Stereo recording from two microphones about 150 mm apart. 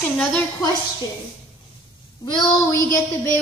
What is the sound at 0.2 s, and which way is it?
Speech, 5° left (ahead or behind).